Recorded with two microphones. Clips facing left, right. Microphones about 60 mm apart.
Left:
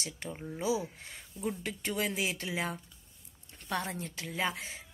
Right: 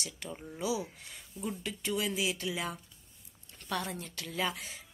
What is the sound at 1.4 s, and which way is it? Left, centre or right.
A woman's voice, left.